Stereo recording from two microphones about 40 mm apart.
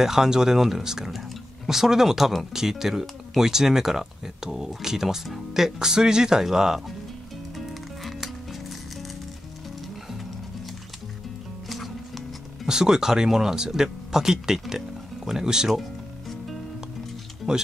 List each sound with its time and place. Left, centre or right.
0.0 s speech: centre
7.5 s music: centre
12.6 s speech: centre
15.8 s music: centre
17.5 s speech: right